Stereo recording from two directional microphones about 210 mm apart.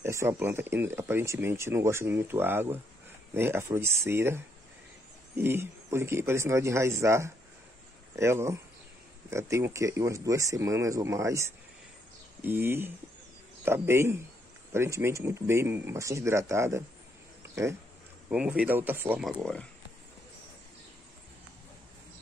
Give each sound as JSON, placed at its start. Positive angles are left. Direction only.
{"t": 0.0, "sound": "speech", "side_deg": -10}
{"t": 5.4, "sound": "speech", "side_deg": -10}
{"t": 12.4, "sound": "speech", "side_deg": -10}
{"t": 18.3, "sound": "speech", "side_deg": -5}